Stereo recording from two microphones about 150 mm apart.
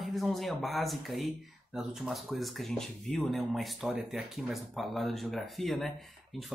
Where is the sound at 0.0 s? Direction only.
Centre (ahead or behind).